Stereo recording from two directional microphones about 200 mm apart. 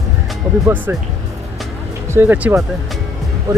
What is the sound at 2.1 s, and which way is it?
Speech, 10° right (ahead or behind).